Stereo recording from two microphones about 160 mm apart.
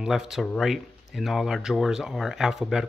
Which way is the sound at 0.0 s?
Centre (ahead or behind).